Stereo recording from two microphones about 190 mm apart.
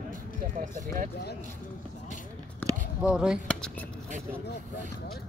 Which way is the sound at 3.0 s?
5° right (ahead or behind).